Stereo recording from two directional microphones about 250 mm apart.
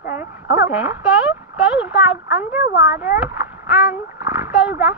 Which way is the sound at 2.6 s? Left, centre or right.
Left.